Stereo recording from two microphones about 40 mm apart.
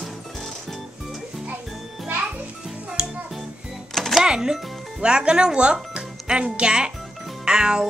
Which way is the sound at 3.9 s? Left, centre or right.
Centre.